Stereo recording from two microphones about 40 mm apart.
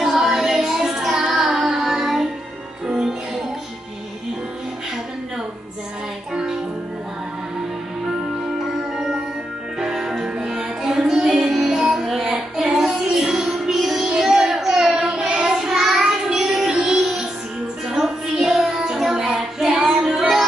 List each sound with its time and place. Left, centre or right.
0.0 s music: centre
8.9 s music: centre
14.0 s child singing: centre
17.8 s music: centre
19.0 s child singing: centre